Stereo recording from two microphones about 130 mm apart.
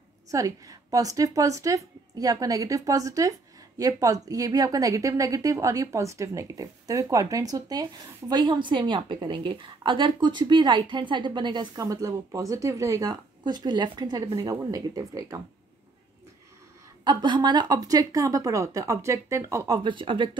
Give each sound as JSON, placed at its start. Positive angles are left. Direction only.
{"t": 0.3, "sound": "a woman's voice", "side_deg": -25}
{"t": 17.0, "sound": "a woman's voice", "side_deg": -35}
{"t": 19.8, "sound": "speech", "side_deg": -40}